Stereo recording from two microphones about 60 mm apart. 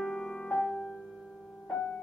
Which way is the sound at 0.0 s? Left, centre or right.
Centre.